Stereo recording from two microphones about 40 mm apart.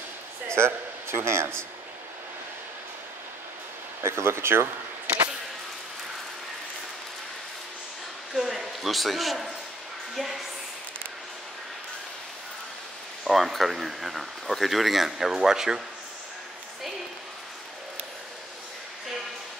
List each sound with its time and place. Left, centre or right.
0.6 s speech: right
4.0 s speech: right
8.4 s speech: centre
13.2 s speech: centre